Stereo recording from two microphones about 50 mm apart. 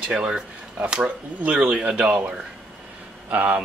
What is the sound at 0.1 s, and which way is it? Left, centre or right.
Speech, centre.